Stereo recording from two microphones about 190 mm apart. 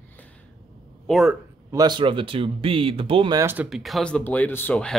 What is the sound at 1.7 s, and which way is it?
Speech, 20° right (ahead or behind).